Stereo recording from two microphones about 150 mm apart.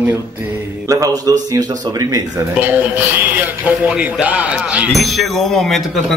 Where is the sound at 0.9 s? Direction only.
25° right (ahead or behind).